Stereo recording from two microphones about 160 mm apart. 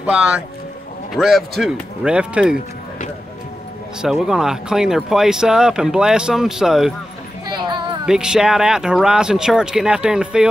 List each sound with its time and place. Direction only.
0.0 s speech: 5° right (ahead or behind)
4.0 s speech: 5° right (ahead or behind)
7.4 s a sound: 30° right (ahead or behind)
8.0 s speech: 5° right (ahead or behind)